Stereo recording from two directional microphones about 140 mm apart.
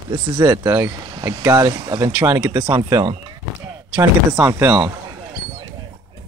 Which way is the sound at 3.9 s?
20° right (ahead or behind).